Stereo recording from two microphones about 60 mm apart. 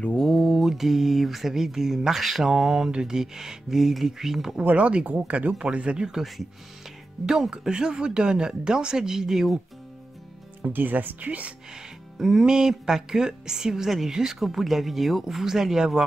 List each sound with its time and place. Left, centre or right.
0.1 s mantra: centre
2.5 s a woman's voice: centre
4.6 s a woman's voice: right; by 9.6 s centre
10.6 s speech: right
12.2 s a woman's voice: centre